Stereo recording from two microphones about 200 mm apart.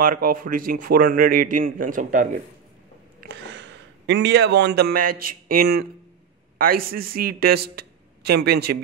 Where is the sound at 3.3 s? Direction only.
60° right (ahead or behind).